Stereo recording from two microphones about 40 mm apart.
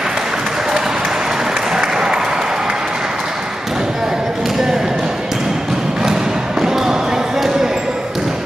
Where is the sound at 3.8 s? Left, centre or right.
Centre.